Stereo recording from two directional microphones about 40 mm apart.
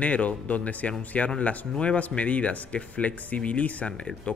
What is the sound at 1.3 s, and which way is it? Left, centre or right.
A man's voice, left.